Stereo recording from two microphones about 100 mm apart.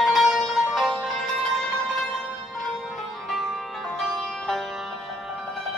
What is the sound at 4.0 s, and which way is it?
Music, 5° left (ahead or behind).